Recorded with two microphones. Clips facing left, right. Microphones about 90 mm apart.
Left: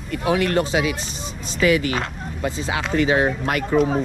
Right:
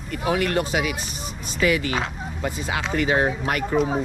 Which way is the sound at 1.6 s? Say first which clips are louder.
Left 3 dB; 35° right (ahead or behind).